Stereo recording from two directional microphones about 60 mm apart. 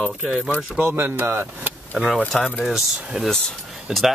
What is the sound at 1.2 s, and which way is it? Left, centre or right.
Speech, right.